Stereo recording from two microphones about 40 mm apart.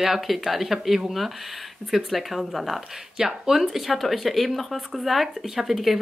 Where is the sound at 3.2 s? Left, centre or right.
Centre.